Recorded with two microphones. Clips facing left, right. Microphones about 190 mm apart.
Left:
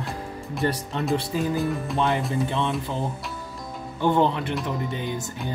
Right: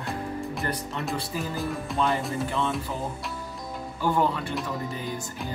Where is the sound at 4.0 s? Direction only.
25° left (ahead or behind).